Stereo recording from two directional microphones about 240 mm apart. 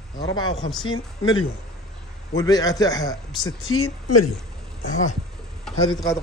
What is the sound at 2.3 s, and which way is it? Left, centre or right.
Speech, centre.